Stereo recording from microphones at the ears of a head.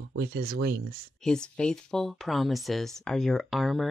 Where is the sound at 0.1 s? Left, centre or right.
Right.